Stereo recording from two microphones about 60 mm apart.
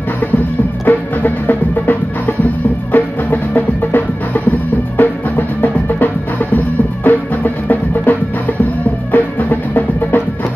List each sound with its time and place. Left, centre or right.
0.8 s music: left
7.1 s music: left